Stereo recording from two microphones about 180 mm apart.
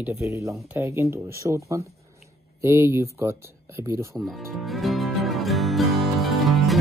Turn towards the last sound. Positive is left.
turn(degrees=0)  # may be behind; listen again after turning